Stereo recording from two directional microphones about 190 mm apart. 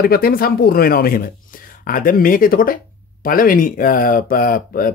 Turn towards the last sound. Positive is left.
turn(degrees=50)  # may be behind; listen again after turning